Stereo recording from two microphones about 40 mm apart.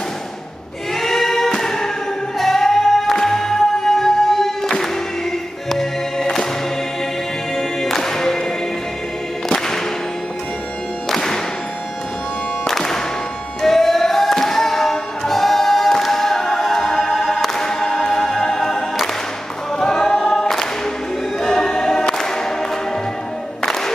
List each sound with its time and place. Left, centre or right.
0.9 s a sound: centre
1.5 s music: centre
7.5 s music: centre
11.1 s music: centre
12.6 s music: centre
19.8 s choir: centre
23.6 s music: centre